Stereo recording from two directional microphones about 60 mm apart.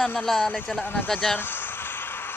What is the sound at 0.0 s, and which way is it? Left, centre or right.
Speech, centre.